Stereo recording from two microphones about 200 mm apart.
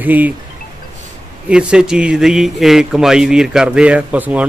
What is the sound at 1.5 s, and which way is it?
A man's voice, 5° right (ahead or behind).